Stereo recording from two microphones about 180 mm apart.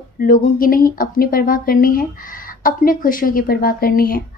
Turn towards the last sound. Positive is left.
turn(degrees=55)  # may be behind; listen again after turning